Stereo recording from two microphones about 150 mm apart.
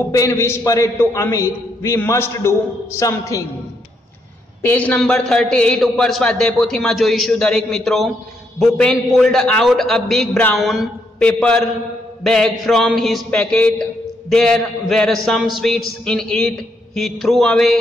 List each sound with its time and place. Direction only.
0.1 s a man's voice: 20° left (ahead or behind)
4.6 s a man's voice: 10° left (ahead or behind)